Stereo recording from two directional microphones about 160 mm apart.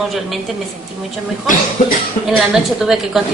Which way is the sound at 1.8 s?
50° left (ahead or behind).